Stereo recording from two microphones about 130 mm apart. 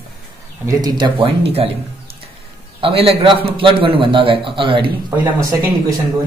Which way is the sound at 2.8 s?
45° right (ahead or behind).